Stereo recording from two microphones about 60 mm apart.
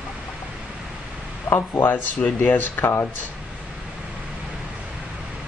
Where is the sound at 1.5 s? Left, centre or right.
Left.